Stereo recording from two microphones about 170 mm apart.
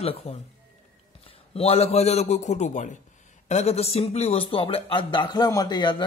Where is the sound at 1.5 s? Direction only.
35° left (ahead or behind).